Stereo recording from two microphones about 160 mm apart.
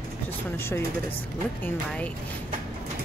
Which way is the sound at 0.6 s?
15° left (ahead or behind).